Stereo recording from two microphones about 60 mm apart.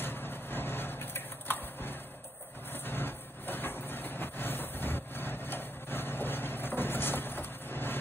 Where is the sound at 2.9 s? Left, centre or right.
Left.